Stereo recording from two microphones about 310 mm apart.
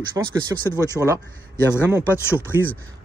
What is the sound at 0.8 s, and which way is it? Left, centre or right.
Speech, centre.